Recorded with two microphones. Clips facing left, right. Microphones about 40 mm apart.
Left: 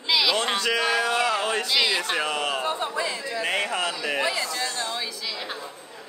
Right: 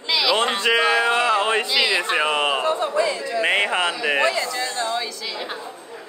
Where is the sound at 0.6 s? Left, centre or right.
Right.